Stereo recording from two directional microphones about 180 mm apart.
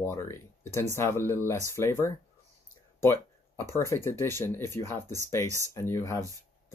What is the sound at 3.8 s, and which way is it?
Speech, 15° left (ahead or behind).